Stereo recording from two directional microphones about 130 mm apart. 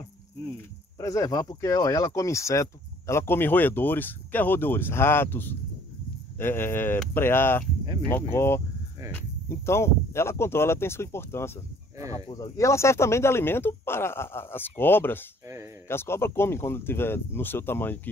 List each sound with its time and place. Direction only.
0.9 s speech: 25° left (ahead or behind)
12.5 s speech: 20° left (ahead or behind)
15.4 s a sound: 20° right (ahead or behind)
15.9 s speech: 20° left (ahead or behind)